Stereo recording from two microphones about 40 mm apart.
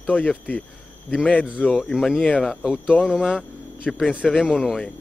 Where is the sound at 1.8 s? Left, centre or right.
Centre.